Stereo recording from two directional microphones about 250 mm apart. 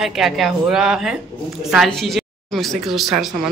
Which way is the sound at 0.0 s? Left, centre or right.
Centre.